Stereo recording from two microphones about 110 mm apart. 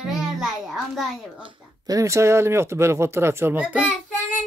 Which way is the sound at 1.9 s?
30° right (ahead or behind).